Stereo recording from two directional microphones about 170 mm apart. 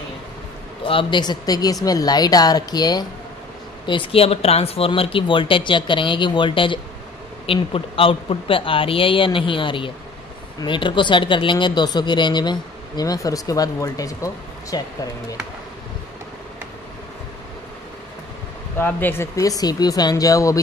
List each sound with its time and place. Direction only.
0.8 s speech: 30° left (ahead or behind)
18.8 s speech: 10° left (ahead or behind)